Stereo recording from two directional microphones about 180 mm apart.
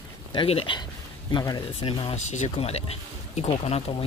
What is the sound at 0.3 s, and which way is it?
Speech, 30° left (ahead or behind).